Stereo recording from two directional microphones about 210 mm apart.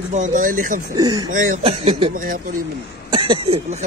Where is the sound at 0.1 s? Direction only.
35° right (ahead or behind).